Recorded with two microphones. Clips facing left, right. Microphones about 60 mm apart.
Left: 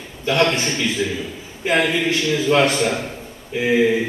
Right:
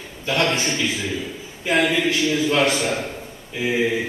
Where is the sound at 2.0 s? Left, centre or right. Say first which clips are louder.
Left 1 dB; left.